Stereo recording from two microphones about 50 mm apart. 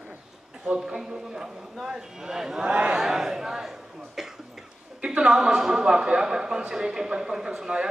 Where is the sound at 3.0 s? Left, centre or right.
Centre.